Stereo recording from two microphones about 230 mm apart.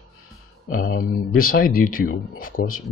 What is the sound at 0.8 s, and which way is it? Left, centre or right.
Speech, left.